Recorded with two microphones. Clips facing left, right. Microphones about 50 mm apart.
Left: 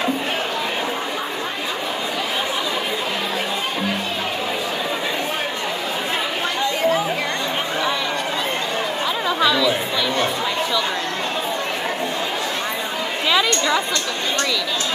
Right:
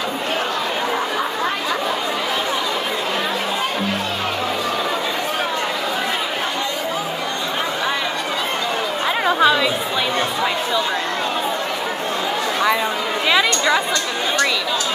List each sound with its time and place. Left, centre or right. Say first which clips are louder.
9.2 s chatter: right 3 dB; right
13.3 s chatter: right 2 dB; centre